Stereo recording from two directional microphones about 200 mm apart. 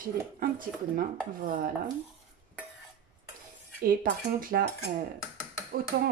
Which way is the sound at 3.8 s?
45° right (ahead or behind).